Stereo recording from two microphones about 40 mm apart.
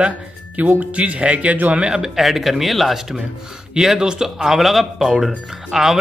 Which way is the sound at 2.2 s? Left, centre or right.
Centre.